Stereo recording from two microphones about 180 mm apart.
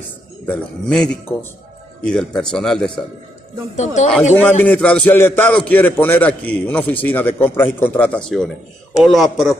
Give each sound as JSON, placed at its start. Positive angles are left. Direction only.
{"t": 0.5, "sound": "speech", "side_deg": 5}
{"t": 3.7, "sound": "speech", "side_deg": 40}
{"t": 4.4, "sound": "a man's voice", "side_deg": 10}